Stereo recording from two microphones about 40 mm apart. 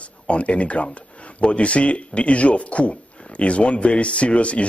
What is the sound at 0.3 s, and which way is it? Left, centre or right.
A man's voice, left.